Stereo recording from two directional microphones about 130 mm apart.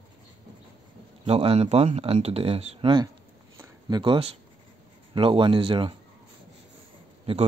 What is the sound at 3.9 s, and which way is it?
Speech, 35° right (ahead or behind).